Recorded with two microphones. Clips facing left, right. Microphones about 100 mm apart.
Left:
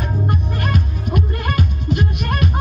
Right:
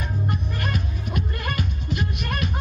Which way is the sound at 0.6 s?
60° left (ahead or behind).